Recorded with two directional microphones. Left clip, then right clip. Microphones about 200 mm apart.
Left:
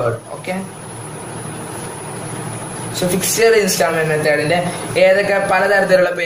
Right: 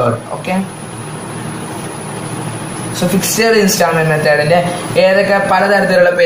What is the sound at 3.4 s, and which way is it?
A man's voice, 40° left (ahead or behind).